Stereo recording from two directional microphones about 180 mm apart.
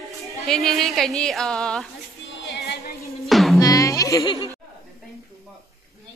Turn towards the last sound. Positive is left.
turn(degrees=20)  # may be behind; listen again after turning